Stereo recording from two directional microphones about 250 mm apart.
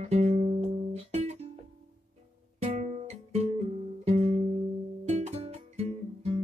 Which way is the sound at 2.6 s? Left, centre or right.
Right.